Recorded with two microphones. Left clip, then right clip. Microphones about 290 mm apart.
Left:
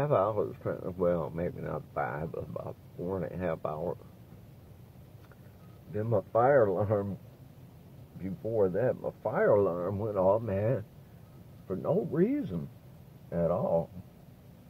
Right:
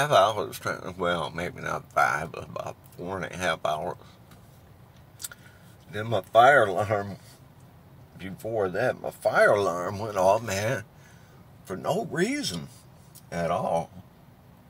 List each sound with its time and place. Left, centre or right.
0.0 s speech: right
5.9 s speech: right
8.2 s speech: right